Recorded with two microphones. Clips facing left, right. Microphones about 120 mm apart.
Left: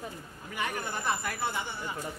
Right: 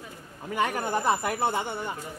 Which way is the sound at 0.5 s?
40° right (ahead or behind).